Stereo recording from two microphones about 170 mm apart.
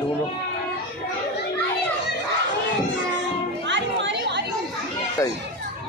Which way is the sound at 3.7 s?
90° right.